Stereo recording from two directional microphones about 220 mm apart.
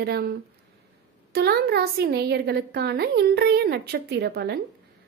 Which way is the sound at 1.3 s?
45° right (ahead or behind).